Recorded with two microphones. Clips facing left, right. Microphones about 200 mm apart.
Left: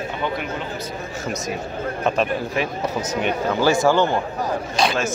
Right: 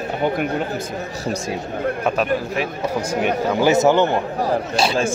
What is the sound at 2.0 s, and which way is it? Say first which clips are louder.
A man's voice: left 1 dB; 5° right (ahead or behind).